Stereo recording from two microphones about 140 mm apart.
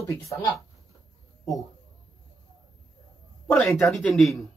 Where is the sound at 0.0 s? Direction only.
20° left (ahead or behind).